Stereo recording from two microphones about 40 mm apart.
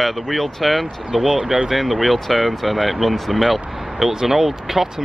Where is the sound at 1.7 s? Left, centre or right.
Centre.